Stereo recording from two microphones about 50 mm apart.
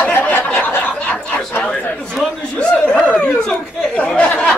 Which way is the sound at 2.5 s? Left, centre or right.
Left.